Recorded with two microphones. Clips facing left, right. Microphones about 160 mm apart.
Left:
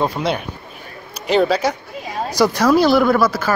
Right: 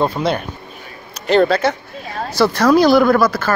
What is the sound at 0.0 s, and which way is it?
Speech, 5° left (ahead or behind).